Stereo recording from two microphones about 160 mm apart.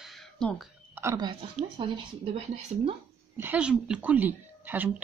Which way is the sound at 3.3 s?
10° right (ahead or behind).